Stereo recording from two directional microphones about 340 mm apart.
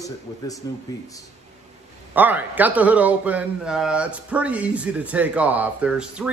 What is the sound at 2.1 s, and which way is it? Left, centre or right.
A man's voice, centre.